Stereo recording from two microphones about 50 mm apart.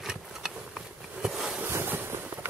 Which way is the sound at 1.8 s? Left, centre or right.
Right.